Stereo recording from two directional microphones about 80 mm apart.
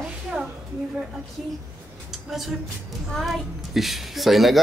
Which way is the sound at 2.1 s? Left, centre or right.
Centre.